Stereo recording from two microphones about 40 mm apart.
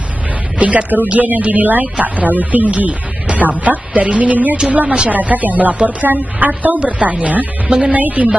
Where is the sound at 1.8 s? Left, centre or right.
Right.